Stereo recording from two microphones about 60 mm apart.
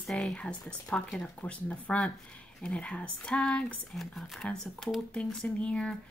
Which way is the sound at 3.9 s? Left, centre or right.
Centre.